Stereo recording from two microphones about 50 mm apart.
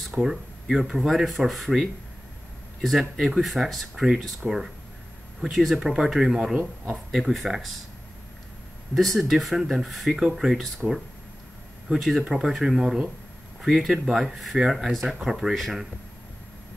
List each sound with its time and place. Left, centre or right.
0.0 s speech: centre
4.4 s speech: centre
5.4 s speech: centre
8.9 s speech: centre
12.0 s speech: centre